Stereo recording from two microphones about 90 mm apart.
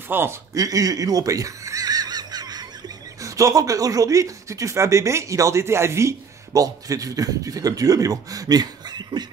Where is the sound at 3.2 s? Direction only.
35° right (ahead or behind).